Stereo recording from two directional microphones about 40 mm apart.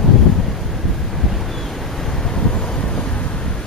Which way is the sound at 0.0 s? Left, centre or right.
Centre.